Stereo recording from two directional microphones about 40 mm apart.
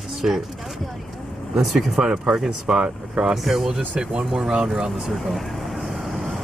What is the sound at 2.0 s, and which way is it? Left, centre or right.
Speech, right.